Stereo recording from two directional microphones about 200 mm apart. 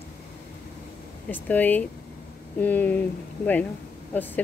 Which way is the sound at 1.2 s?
10° left (ahead or behind).